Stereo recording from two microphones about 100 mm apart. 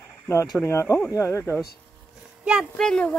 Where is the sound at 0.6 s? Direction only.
25° left (ahead or behind).